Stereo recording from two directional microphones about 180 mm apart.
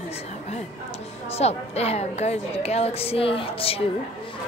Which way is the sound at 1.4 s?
35° left (ahead or behind).